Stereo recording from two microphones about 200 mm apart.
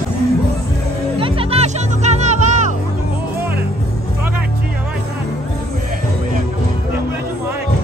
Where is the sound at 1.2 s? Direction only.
30° right (ahead or behind).